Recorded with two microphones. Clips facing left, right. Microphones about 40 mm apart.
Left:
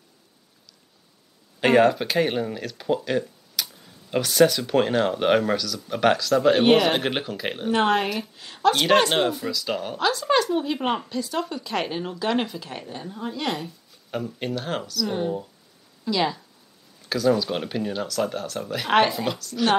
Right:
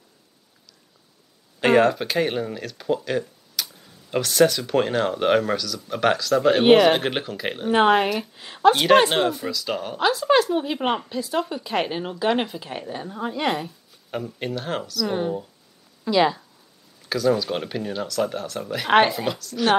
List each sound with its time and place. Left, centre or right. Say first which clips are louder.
1.6 s speech: even; centre
3.1 s tick-tock: even; centre
4.1 s speech: even; centre
7.7 s speech: right 4 dB; centre
9.9 s speech: right 3 dB; centre
13.7 s speech: right 1 dB; centre
16.0 s speech: right 5 dB; centre
17.1 s speech: even; centre